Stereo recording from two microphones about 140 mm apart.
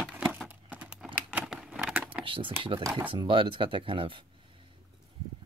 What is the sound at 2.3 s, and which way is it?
Speech, 35° right (ahead or behind).